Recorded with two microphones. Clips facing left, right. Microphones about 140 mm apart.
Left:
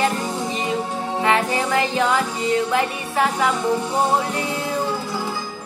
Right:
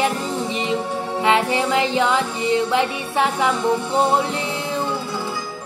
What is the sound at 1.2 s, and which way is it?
Music, 20° right (ahead or behind).